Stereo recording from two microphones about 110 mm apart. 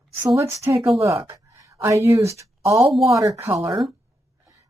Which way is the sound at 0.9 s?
25° right (ahead or behind).